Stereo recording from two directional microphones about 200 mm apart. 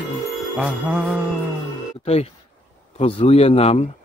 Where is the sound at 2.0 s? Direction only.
30° left (ahead or behind).